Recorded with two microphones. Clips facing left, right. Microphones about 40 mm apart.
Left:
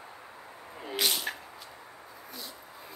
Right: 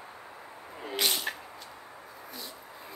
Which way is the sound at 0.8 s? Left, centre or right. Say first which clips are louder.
Even; centre.